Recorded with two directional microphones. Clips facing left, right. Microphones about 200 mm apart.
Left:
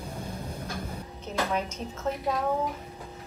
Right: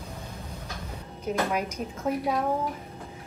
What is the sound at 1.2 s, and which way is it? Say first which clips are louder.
Speech: right 2 dB; 10° right (ahead or behind).